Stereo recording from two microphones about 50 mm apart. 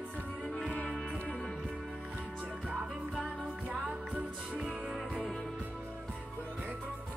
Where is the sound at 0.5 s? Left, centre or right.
Centre.